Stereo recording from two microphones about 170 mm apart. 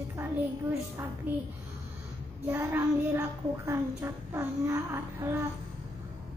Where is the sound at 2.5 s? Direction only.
10° right (ahead or behind).